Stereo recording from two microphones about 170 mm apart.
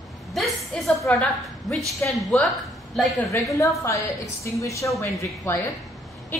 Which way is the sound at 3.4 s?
15° left (ahead or behind).